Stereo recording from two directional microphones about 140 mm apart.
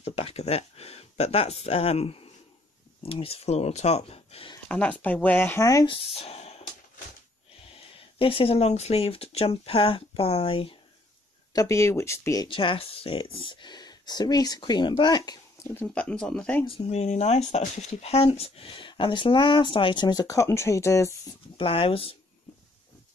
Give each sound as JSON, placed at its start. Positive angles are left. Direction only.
{"t": 0.0, "sound": "speech", "side_deg": 45}
{"t": 4.6, "sound": "speech", "side_deg": 10}
{"t": 5.9, "sound": "speech", "side_deg": 45}
{"t": 7.6, "sound": "speech", "side_deg": 40}
{"t": 11.5, "sound": "speech", "side_deg": 20}
{"t": 12.4, "sound": "speech", "side_deg": 40}
{"t": 15.6, "sound": "speech", "side_deg": 15}
{"t": 16.6, "sound": "speech", "side_deg": 45}
{"t": 21.5, "sound": "speech", "side_deg": 40}